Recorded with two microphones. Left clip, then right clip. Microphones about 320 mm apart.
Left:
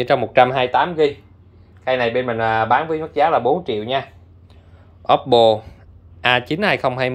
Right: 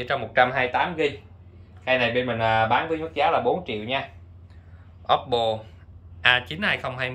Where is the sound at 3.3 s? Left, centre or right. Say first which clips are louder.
Left 3 dB; left.